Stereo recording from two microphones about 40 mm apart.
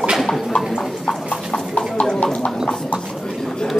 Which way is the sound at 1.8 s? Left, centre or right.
Left.